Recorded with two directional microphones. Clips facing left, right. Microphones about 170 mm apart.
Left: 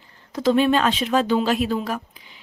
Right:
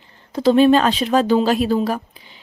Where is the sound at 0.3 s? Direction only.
30° right (ahead or behind).